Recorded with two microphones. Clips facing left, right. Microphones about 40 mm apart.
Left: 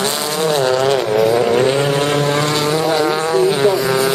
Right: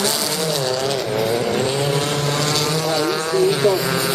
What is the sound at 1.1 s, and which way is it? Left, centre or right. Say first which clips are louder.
Vehicle: left 6 dB; centre.